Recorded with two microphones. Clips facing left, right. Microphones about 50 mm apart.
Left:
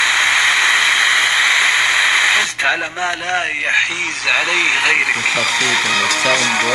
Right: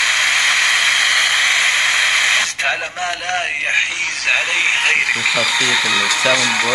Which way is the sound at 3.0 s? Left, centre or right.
Centre.